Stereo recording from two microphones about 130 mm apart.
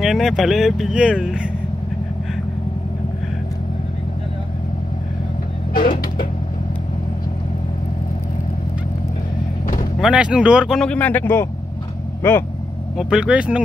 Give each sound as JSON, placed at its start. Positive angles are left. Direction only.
{"t": 0.0, "sound": "speech", "side_deg": 0}
{"t": 5.7, "sound": "music", "side_deg": 90}
{"t": 9.9, "sound": "speech", "side_deg": -5}
{"t": 10.8, "sound": "speech", "side_deg": 10}
{"t": 12.9, "sound": "speech", "side_deg": -5}